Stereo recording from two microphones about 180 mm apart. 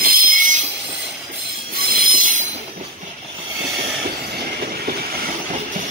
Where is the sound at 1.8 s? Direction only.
55° right (ahead or behind).